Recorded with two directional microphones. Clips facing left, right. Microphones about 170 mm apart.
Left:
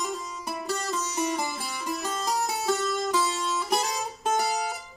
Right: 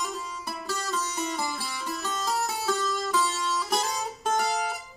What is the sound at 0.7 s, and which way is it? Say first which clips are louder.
Music: left 1 dB; 15° left (ahead or behind).